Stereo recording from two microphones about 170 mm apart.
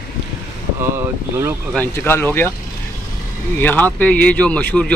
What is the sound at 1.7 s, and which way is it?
Speech, 10° left (ahead or behind).